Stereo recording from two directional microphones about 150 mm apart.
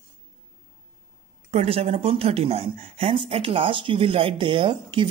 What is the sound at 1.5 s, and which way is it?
Speech, 45° right (ahead or behind).